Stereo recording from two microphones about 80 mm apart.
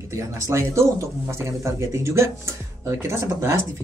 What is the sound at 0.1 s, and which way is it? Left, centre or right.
Speech, right.